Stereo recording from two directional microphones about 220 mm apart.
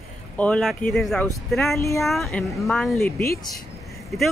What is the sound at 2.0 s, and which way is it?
Speech, centre (ahead or behind).